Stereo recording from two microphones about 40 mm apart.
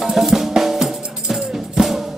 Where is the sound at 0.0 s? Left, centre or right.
Centre.